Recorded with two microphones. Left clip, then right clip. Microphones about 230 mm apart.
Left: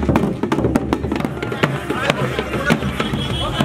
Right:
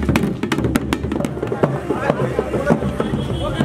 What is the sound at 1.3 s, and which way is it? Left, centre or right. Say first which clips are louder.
Music: right 1 dB; centre.